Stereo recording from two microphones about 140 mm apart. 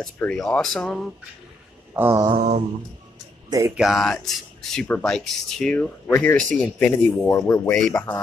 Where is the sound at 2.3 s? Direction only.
50° right (ahead or behind).